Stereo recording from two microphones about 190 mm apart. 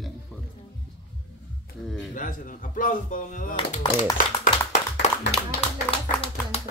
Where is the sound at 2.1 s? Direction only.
45° left (ahead or behind).